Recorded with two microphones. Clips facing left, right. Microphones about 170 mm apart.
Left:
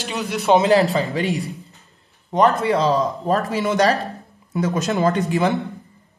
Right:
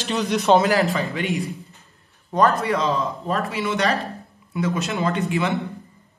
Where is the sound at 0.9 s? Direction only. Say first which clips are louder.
Left 3 dB; 35° left (ahead or behind).